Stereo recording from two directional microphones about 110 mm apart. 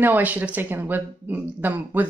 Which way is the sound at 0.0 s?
15° right (ahead or behind).